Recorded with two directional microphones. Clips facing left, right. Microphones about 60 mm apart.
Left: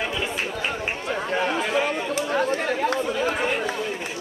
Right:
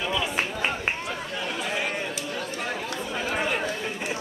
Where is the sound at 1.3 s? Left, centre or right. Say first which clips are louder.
Left 8 dB; left.